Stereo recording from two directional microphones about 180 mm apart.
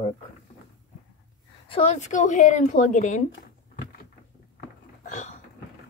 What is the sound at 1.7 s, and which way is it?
Speech, 35° left (ahead or behind).